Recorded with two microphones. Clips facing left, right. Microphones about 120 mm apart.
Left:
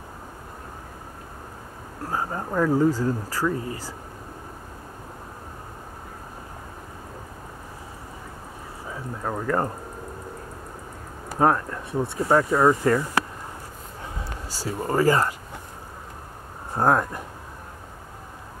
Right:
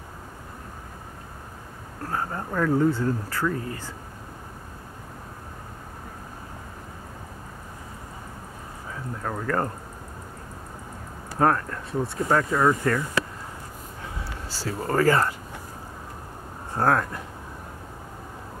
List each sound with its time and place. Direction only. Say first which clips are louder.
2.0 s speech: left 1 dB; 15° left (ahead or behind)
2.9 s speech: left 1 dB; 35° left (ahead or behind)
9.2 s speech: left 2 dB; 15° left (ahead or behind)
11.3 s speech: left 1 dB; 15° left (ahead or behind)
14.5 s speech: left 1 dB; 15° left (ahead or behind)
16.7 s speech: left 2 dB; 15° left (ahead or behind)